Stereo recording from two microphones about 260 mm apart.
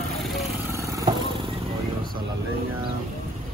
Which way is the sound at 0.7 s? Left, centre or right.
Centre.